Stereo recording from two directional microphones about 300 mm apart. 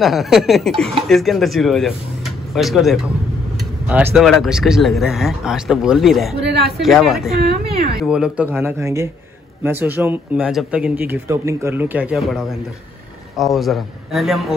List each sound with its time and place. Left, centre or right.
0.0 s speech: centre
7.3 s speech: right
8.0 s speech: centre